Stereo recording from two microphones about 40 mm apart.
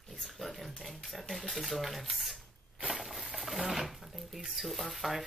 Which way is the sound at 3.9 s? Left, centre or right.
Centre.